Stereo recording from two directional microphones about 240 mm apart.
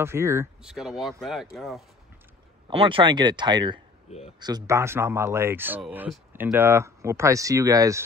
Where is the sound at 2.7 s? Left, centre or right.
Right.